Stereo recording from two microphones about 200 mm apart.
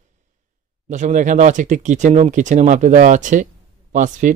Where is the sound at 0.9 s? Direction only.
40° right (ahead or behind).